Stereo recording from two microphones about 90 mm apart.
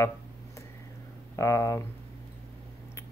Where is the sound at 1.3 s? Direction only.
35° left (ahead or behind).